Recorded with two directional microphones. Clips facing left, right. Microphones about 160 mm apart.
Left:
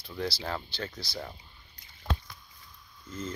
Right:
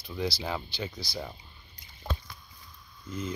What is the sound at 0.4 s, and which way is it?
Speech, 10° right (ahead or behind).